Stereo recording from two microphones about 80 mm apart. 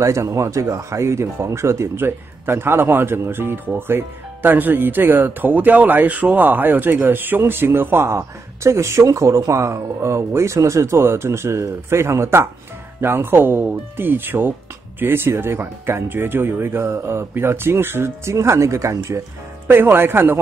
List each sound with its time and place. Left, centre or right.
0.0 s speech: right
19.7 s speech: right